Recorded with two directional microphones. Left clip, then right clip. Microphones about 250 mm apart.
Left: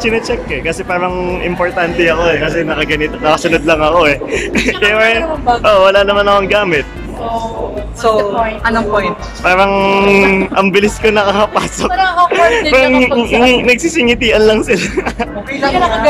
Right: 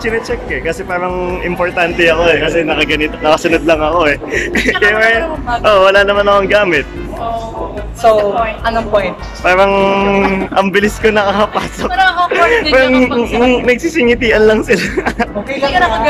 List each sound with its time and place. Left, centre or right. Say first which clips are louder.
0.0 s speech: left 2 dB; centre
8.6 s speech: left 1 dB; centre
11.9 s speech: right 2 dB; left
12.3 s speech: left 1 dB; centre